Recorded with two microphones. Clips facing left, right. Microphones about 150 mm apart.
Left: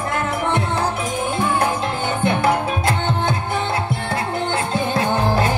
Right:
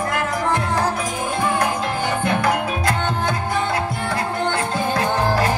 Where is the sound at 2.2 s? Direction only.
25° left (ahead or behind).